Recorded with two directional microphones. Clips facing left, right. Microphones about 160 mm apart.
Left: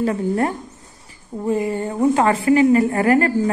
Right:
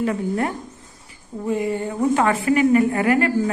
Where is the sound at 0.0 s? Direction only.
35° left (ahead or behind).